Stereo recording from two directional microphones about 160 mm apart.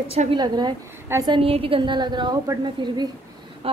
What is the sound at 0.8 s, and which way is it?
A woman's voice, 15° right (ahead or behind).